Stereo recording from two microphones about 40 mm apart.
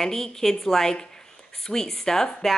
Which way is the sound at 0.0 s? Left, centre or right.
Centre.